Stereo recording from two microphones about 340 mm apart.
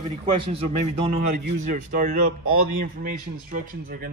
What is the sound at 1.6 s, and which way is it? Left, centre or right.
A man's voice, right.